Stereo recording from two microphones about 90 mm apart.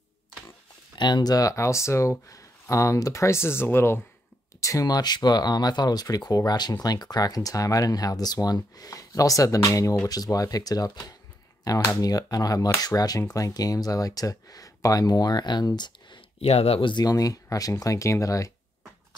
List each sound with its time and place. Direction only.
0.9 s speech: 55° left (ahead or behind); by 4.0 s 25° left (ahead or behind)
4.6 s speech: 40° left (ahead or behind); by 16.2 s 55° left (ahead or behind)
16.6 s speech: 80° left
17.0 s speech: 40° left (ahead or behind)